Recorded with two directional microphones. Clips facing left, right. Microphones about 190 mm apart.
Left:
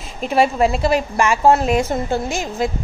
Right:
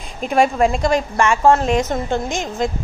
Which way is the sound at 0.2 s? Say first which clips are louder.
Even; centre (ahead or behind).